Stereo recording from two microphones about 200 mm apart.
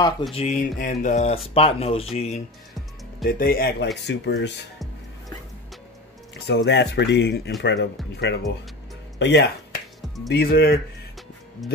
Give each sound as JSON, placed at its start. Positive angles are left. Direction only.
{"t": 0.3, "sound": "speech", "side_deg": 35}
{"t": 3.3, "sound": "speech", "side_deg": 45}
{"t": 4.1, "sound": "speech", "side_deg": 60}
{"t": 6.3, "sound": "speech", "side_deg": 55}
{"t": 11.6, "sound": "speech", "side_deg": 0}